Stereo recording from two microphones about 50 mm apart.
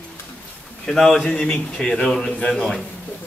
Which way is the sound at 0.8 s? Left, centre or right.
Centre.